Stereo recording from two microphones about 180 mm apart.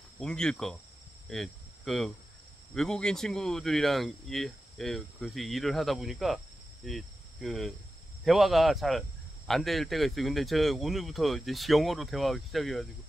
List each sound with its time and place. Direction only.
0.2 s speech: 5° left (ahead or behind)
1.3 s hum: centre (ahead or behind)
2.7 s speech: 5° left (ahead or behind)